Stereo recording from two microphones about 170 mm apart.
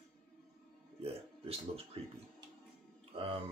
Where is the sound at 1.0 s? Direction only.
35° right (ahead or behind).